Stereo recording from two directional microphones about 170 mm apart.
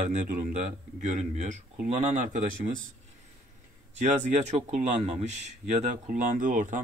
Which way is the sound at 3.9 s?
45° right (ahead or behind).